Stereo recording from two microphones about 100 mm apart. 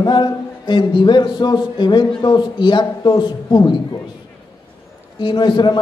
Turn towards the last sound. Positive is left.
turn(degrees=50)  # may be behind; listen again after turning